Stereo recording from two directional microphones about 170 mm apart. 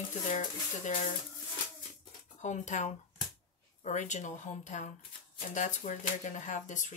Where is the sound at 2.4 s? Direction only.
45° left (ahead or behind).